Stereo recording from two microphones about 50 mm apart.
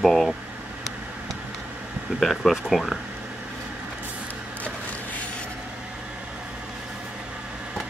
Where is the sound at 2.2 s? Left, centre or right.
Centre.